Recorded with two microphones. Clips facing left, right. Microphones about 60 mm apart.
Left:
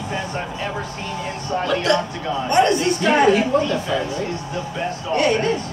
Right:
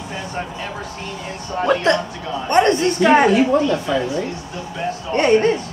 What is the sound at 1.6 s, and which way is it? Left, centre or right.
Speech, right.